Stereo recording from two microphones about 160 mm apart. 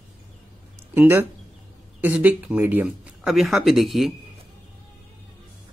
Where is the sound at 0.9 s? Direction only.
15° right (ahead or behind).